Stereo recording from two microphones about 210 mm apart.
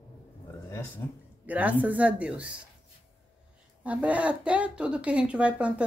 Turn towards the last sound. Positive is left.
turn(degrees=-5)  # may be behind; listen again after turning